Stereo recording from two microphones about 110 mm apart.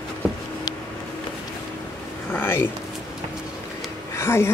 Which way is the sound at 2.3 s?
20° left (ahead or behind).